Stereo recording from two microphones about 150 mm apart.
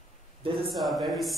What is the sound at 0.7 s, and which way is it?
Speech, centre (ahead or behind).